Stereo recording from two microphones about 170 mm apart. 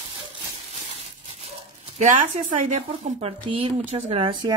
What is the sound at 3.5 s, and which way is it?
Speech, 35° right (ahead or behind).